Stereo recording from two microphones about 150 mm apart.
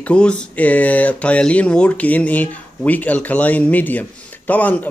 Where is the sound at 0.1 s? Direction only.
5° left (ahead or behind).